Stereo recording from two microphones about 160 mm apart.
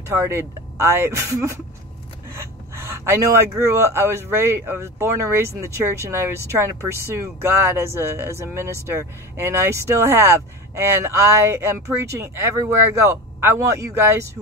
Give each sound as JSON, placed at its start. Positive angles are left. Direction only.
{"t": 0.1, "sound": "speech", "side_deg": -15}
{"t": 3.1, "sound": "speech", "side_deg": -20}